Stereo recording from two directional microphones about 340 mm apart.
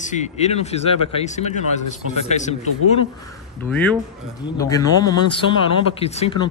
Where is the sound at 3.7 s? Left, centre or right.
Centre.